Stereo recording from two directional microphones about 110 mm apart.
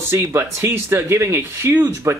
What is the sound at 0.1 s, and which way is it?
Speech, 20° right (ahead or behind).